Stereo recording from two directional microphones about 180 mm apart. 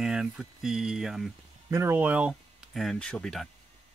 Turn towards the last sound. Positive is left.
turn(degrees=5)  # may be behind; listen again after turning